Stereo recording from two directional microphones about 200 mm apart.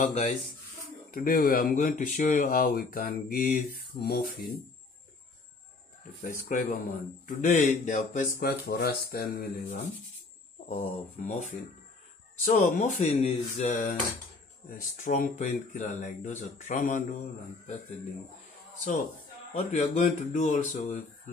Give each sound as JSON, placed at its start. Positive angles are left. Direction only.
{"t": 0.0, "sound": "speech", "side_deg": 35}
{"t": 6.2, "sound": "speech", "side_deg": 40}
{"t": 12.5, "sound": "speech", "side_deg": 35}
{"t": 15.0, "sound": "speech", "side_deg": 40}
{"t": 19.5, "sound": "speech", "side_deg": 30}